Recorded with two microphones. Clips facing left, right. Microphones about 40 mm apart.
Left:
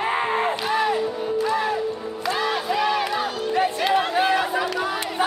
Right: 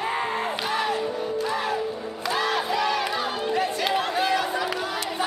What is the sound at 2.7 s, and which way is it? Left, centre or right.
Crowd, centre.